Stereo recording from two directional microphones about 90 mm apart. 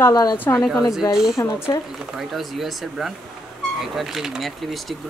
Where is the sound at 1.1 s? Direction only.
5° right (ahead or behind).